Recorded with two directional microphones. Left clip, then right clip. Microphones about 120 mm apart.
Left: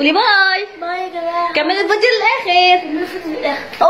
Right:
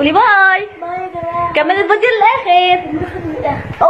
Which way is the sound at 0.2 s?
30° left (ahead or behind).